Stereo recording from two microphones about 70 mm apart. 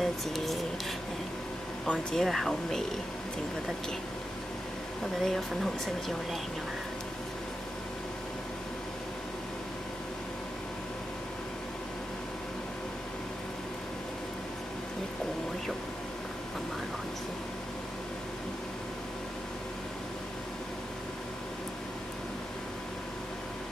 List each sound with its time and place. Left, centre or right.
0.0 s speech: centre
1.9 s speech: centre
5.2 s speech: centre